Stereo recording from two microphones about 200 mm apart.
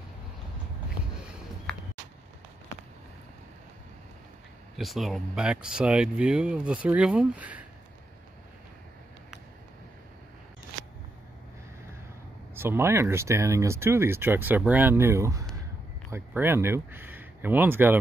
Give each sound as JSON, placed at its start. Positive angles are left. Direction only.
{"t": 4.7, "sound": "speech", "side_deg": 0}
{"t": 12.5, "sound": "speech", "side_deg": -10}